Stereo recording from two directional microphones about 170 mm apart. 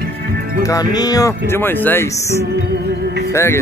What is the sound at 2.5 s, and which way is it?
Music, 75° right (ahead or behind).